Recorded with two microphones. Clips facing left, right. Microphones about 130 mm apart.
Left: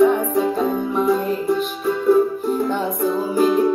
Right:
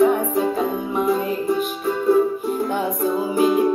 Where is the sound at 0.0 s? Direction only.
5° right (ahead or behind).